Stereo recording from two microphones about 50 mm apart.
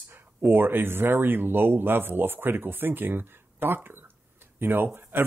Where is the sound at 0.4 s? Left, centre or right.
Right.